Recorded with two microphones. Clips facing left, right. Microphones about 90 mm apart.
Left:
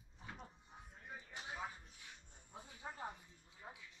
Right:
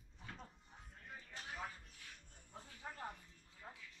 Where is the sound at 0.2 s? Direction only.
15° left (ahead or behind).